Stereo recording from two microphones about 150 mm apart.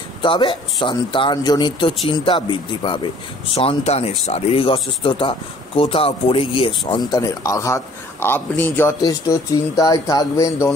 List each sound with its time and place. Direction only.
0.2 s speech: 35° left (ahead or behind)
3.5 s a man's voice: 45° left (ahead or behind); by 10.7 s 20° left (ahead or behind)